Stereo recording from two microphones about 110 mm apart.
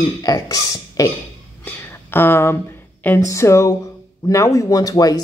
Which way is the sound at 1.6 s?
20° left (ahead or behind).